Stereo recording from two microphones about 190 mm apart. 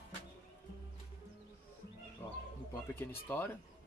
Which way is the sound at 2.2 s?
10° left (ahead or behind).